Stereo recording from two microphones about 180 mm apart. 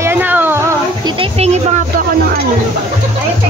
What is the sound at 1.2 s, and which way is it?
Speech, 35° right (ahead or behind).